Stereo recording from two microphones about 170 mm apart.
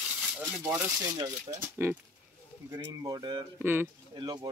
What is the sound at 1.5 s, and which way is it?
Speech, 20° right (ahead or behind).